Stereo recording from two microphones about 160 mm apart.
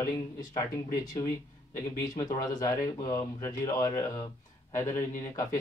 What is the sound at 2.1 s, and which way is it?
Speech, 25° left (ahead or behind).